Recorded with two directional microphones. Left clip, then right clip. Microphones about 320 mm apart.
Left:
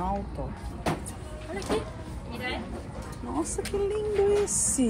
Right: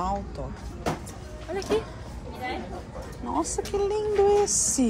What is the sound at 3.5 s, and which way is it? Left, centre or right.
Speech, centre.